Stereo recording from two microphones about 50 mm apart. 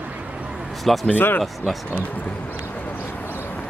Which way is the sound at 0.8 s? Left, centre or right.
Centre.